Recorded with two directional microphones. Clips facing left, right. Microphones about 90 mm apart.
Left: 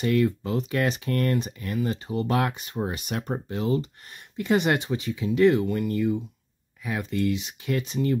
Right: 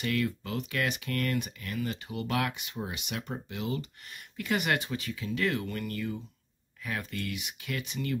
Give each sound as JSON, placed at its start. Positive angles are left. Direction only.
{"t": 0.0, "sound": "speech", "side_deg": 25}